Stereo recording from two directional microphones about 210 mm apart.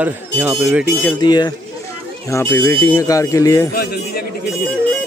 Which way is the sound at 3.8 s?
45° left (ahead or behind).